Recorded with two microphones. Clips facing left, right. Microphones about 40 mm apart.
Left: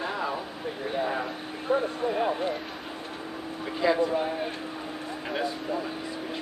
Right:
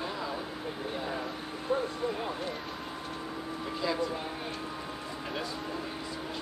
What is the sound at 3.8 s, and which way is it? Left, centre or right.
Speech, left.